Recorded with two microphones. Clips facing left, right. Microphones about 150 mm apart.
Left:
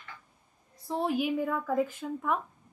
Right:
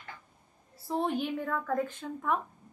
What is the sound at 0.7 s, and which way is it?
Speech, centre (ahead or behind).